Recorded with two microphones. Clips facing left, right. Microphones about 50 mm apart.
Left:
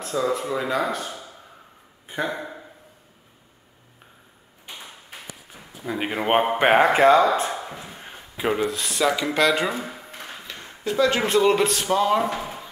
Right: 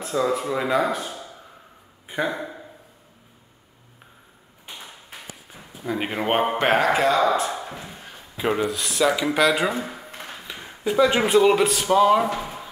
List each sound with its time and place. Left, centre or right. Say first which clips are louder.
0.0 s speech: right 1 dB; centre
2.0 s a sound: right 2 dB; centre
5.9 s speech: left 1 dB; centre
6.8 s speech: left 4 dB; left
7.9 s a sound: left 1 dB; left
8.4 s speech: even; centre